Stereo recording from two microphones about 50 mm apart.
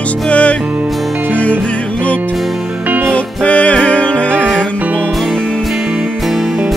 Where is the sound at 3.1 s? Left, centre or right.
Left.